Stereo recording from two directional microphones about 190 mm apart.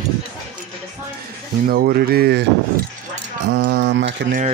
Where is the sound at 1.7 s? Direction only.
50° right (ahead or behind).